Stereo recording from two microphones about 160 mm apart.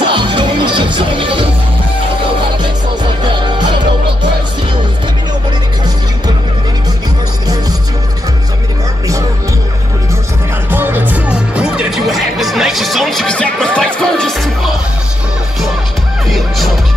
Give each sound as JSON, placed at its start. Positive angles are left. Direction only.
{"t": 0.1, "sound": "music", "side_deg": -30}
{"t": 3.3, "sound": "music", "side_deg": -30}
{"t": 10.7, "sound": "music", "side_deg": -10}
{"t": 16.3, "sound": "music", "side_deg": 0}